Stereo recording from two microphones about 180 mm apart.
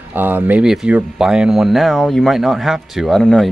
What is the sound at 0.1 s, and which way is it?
Speech, 10° right (ahead or behind).